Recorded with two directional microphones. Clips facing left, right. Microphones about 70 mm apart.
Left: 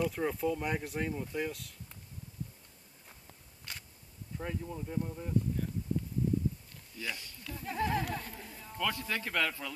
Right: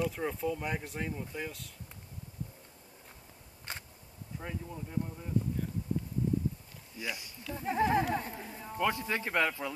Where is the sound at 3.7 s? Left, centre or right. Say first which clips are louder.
Right 4 dB; right.